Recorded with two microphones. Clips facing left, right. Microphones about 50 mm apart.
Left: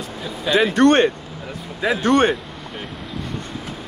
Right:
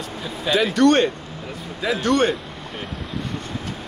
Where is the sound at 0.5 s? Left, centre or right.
Left.